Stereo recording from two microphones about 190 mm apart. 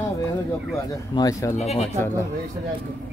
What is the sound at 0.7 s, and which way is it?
Speech, 20° left (ahead or behind).